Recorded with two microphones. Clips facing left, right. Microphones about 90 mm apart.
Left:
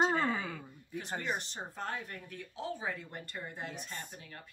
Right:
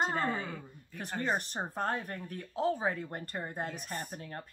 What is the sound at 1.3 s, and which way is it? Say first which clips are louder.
Speech: right 5 dB; 45° right (ahead or behind).